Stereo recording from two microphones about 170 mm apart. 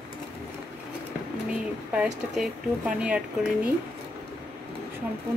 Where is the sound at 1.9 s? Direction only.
5° right (ahead or behind).